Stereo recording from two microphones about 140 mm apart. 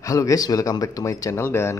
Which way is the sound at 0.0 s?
25° left (ahead or behind).